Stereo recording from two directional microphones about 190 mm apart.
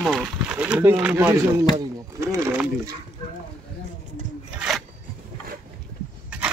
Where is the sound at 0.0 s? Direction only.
5° right (ahead or behind).